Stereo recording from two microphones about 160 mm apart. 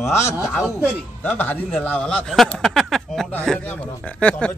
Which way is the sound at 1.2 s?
10° left (ahead or behind).